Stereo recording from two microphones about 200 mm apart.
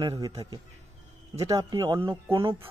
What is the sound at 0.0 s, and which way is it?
A man's voice, 20° right (ahead or behind).